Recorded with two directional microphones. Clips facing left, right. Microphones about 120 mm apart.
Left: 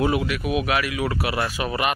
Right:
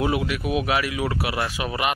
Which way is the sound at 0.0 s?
20° right (ahead or behind).